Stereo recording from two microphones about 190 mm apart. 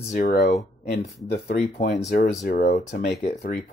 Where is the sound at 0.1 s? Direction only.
40° left (ahead or behind).